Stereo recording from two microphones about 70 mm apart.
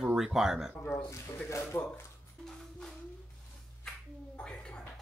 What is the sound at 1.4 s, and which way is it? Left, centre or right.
Speech, left.